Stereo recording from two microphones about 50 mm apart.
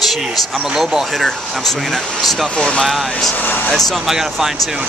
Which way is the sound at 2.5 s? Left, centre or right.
Centre.